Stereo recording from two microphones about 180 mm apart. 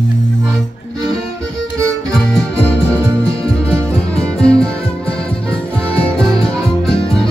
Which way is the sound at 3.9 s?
5° left (ahead or behind).